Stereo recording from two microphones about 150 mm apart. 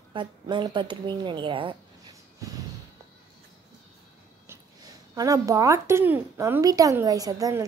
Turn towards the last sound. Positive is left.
turn(degrees=-25)  # may be behind; listen again after turning